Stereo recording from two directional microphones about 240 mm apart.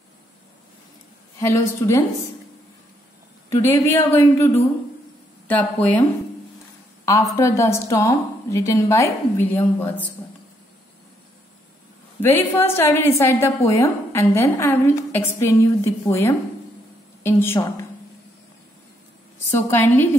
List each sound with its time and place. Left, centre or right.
1.4 s a woman's voice: centre
3.4 s a woman's voice: centre
5.5 s speech: centre
7.1 s a woman's voice: centre
12.2 s a woman's voice: centre
19.5 s a woman's voice: centre